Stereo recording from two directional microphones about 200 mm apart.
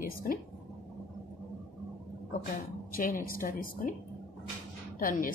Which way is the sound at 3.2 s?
45° left (ahead or behind).